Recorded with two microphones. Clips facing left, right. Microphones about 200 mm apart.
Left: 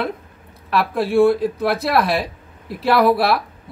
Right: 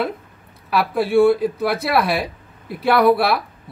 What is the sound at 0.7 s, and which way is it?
Speech, centre (ahead or behind).